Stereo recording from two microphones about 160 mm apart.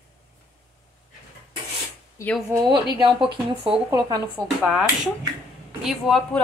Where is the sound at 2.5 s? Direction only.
25° right (ahead or behind).